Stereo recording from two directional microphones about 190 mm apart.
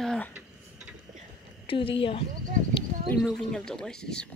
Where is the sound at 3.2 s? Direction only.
5° left (ahead or behind).